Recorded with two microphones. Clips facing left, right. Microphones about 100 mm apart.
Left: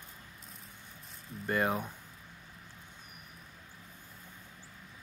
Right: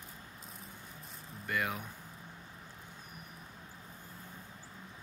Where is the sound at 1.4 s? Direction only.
35° left (ahead or behind).